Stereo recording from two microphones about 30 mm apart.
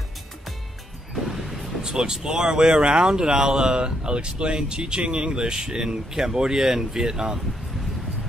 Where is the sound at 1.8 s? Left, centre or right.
Right.